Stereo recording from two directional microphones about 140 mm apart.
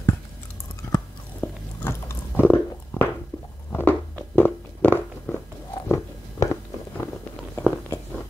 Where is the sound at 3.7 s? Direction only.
15° left (ahead or behind).